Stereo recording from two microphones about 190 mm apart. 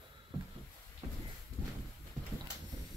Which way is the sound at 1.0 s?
30° right (ahead or behind).